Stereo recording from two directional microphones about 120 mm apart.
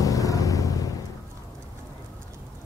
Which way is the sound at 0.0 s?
30° left (ahead or behind).